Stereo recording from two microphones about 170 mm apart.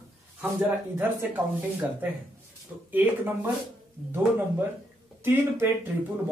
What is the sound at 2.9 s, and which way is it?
Speech, 10° right (ahead or behind).